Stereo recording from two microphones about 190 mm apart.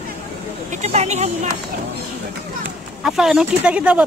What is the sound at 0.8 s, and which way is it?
Speech, 35° right (ahead or behind).